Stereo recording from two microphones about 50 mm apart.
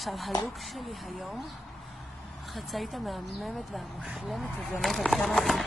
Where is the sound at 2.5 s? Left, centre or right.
Centre.